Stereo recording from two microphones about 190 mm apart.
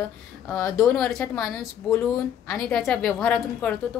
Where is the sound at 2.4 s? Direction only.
10° left (ahead or behind).